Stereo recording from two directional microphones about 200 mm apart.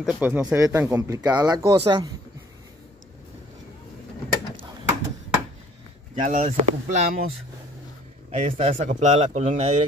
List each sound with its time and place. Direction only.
0.0 s speech: 5° right (ahead or behind); by 2.0 s 25° right (ahead or behind)
6.1 s speech: 40° right (ahead or behind)
8.3 s speech: 30° right (ahead or behind)